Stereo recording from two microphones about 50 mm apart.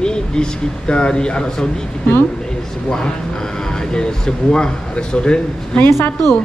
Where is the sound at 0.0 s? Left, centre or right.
Centre.